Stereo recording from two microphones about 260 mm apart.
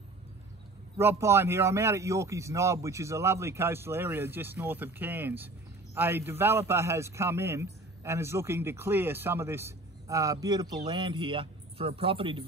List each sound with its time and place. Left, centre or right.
0.9 s a man's voice: centre